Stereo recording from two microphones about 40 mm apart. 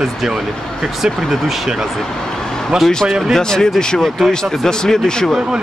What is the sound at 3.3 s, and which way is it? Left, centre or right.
Speech, centre.